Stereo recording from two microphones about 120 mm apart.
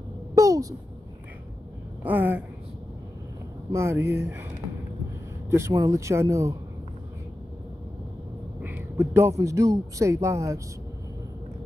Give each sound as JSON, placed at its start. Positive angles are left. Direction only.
{"t": 0.3, "sound": "a sound", "side_deg": -30}
{"t": 2.0, "sound": "a woman's voice", "side_deg": -15}
{"t": 3.7, "sound": "speech", "side_deg": -20}
{"t": 5.5, "sound": "speech", "side_deg": -25}
{"t": 8.5, "sound": "a man's voice", "side_deg": -15}